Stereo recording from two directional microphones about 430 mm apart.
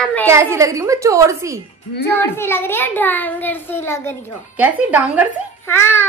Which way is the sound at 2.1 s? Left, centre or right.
Centre.